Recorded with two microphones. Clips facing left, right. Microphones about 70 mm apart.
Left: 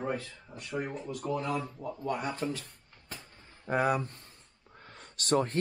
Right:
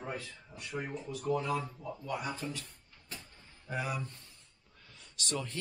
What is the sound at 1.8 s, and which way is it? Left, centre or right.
Speech, left.